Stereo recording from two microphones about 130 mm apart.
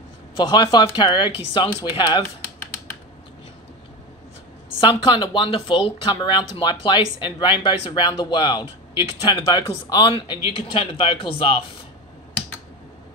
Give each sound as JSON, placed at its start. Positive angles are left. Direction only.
{"t": 0.4, "sound": "speech", "side_deg": 35}
{"t": 4.7, "sound": "speech", "side_deg": 40}